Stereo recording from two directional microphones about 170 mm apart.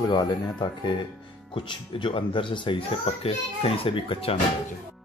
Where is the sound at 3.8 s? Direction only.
35° left (ahead or behind).